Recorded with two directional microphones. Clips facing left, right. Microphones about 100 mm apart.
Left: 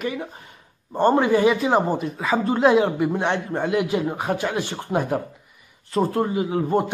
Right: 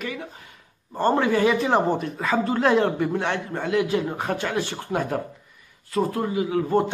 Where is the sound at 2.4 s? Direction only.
20° left (ahead or behind).